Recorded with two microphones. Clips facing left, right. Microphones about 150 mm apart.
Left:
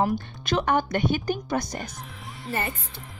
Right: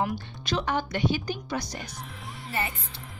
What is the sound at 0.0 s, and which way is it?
A woman's voice, 50° left (ahead or behind).